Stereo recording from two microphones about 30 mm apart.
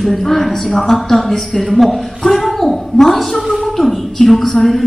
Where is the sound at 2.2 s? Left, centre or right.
Centre.